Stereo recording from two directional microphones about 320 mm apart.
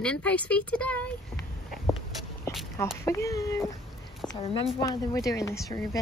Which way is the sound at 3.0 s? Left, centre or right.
Centre.